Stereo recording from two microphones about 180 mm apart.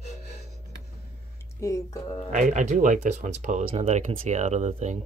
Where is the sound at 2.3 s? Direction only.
40° right (ahead or behind).